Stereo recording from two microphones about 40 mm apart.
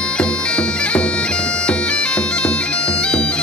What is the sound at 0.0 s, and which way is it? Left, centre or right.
Bagpipes, left.